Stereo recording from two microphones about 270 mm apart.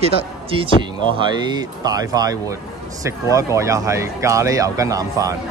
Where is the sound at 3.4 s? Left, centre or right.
Centre.